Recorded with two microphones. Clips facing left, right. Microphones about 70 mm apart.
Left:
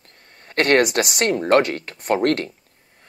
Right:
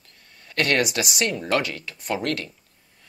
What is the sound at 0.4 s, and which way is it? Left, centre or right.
Speech, left.